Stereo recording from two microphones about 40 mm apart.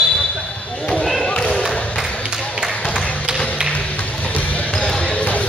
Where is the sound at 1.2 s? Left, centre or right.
Centre.